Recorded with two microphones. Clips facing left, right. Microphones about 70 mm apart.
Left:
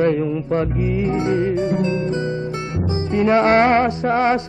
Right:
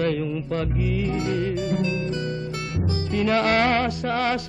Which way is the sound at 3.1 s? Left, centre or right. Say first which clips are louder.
Left 6 dB; left.